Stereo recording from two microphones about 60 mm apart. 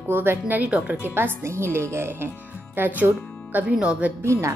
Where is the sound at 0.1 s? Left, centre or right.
Right.